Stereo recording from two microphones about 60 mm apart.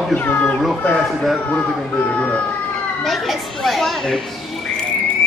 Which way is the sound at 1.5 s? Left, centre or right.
Left.